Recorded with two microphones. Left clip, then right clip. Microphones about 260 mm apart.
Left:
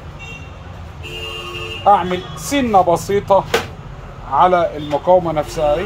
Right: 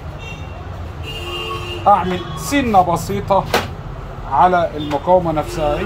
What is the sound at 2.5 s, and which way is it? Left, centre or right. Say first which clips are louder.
Speech: left 1 dB; left.